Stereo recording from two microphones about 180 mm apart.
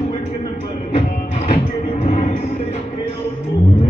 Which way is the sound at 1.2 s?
40° left (ahead or behind).